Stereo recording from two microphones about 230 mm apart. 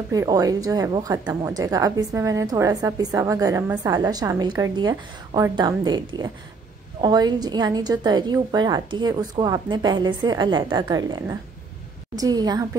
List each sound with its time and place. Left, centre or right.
0.1 s a woman's voice: centre